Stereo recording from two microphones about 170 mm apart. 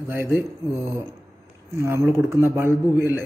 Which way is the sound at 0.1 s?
15° right (ahead or behind).